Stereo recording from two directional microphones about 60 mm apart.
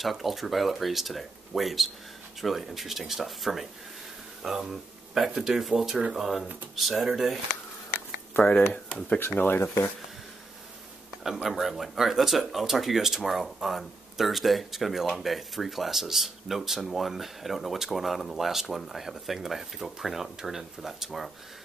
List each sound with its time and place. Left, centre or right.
0.0 s speech: centre
8.4 s speech: left
11.4 s speech: centre